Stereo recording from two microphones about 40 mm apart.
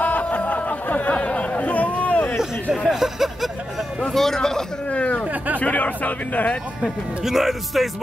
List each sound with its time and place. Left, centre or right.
0.0 s music: left
1.1 s chatter: left
2.9 s speech: centre
4.1 s a man's voice: centre
4.9 s a sound: left
5.6 s speech: left
7.2 s speech: centre